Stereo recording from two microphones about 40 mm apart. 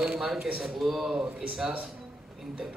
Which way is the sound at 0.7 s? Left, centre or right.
Centre.